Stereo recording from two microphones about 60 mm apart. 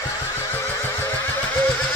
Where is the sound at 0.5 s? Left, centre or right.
Left.